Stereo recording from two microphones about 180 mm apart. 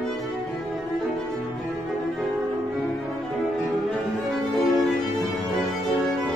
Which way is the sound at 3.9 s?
Centre (ahead or behind).